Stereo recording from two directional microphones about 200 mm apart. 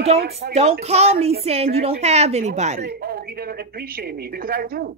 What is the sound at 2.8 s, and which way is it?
A woman's voice, 50° right (ahead or behind).